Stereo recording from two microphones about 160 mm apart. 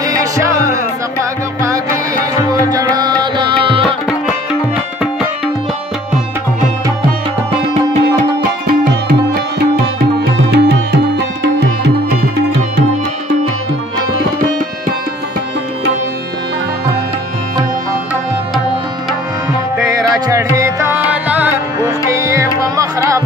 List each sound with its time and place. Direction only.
0.0 s music: 20° right (ahead or behind)
2.4 s music: 25° right (ahead or behind)
10.5 s music: 90° right
20.5 s music: 15° right (ahead or behind)